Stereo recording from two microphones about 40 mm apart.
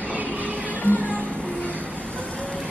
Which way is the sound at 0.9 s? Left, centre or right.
Left.